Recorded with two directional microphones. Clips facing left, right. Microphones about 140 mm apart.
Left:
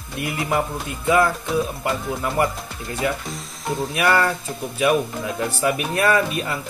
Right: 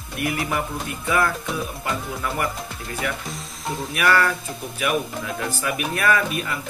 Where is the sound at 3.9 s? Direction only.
25° left (ahead or behind).